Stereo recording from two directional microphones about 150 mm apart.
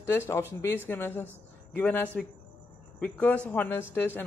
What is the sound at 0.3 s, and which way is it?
A man's voice, 15° left (ahead or behind).